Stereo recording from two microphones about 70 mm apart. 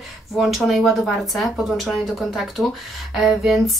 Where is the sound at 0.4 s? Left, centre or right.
Centre.